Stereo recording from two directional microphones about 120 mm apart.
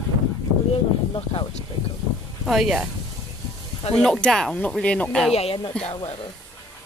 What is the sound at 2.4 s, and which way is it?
Speech, 5° right (ahead or behind).